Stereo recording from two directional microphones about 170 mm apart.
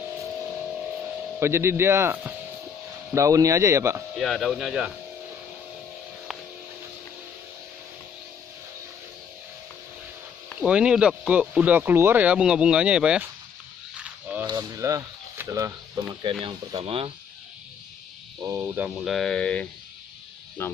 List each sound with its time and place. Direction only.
1.4 s speech: 15° right (ahead or behind)
4.2 s speech: centre (ahead or behind)
10.6 s speech: 5° right (ahead or behind)
14.4 s speech: 25° right (ahead or behind)
18.4 s speech: 15° right (ahead or behind)
18.9 s speech: centre (ahead or behind)